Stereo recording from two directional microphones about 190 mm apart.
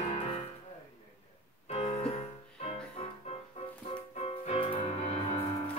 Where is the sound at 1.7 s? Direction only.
30° left (ahead or behind).